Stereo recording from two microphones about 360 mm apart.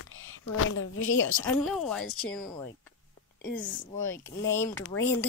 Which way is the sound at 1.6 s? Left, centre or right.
Centre.